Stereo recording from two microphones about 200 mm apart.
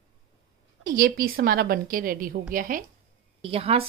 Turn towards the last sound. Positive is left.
turn(degrees=-30)  # may be behind; listen again after turning